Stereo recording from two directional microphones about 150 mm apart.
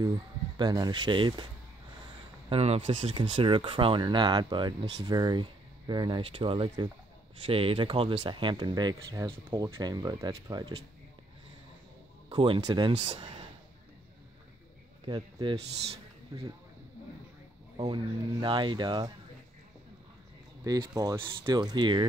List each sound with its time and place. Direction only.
0.6 s speech: 30° right (ahead or behind)
2.5 s speech: 40° right (ahead or behind)
12.3 s speech: 35° right (ahead or behind)
12.9 s speech: 40° right (ahead or behind)
15.0 s speech: 30° right (ahead or behind)
17.7 s speech: 30° right (ahead or behind)
20.6 s speech: 25° right (ahead or behind)